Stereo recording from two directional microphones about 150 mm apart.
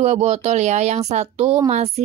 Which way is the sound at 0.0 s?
45° right (ahead or behind).